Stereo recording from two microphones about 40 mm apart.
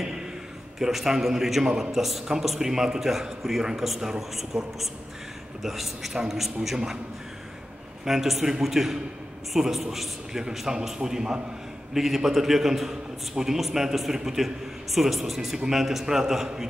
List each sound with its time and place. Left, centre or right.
0.7 s a man's voice: centre
8.0 s a man's voice: centre